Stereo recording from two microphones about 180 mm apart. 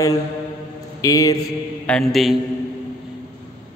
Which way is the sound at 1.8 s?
5° left (ahead or behind).